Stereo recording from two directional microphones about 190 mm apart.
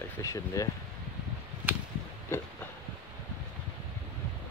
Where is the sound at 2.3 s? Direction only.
15° left (ahead or behind).